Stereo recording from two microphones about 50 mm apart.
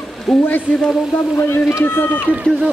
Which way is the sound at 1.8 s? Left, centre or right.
Left.